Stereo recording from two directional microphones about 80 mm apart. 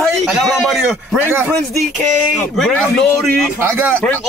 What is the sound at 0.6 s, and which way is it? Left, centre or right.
Speech, centre.